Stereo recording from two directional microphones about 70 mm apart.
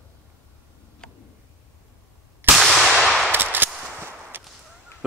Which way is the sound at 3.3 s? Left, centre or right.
Right.